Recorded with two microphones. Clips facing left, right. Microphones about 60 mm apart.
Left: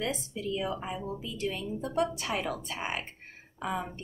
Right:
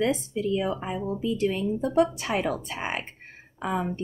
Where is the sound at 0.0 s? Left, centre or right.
Right.